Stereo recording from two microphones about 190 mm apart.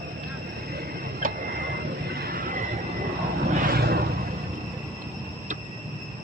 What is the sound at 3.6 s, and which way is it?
Vehicle, 55° right (ahead or behind).